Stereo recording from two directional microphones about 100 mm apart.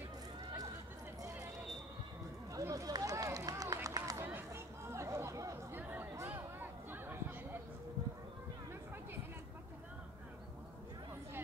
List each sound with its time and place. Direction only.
2.5 s run: 35° right (ahead or behind)
4.2 s chatter: 25° right (ahead or behind)
5.8 s music: 20° right (ahead or behind)
6.1 s a sound: 20° right (ahead or behind)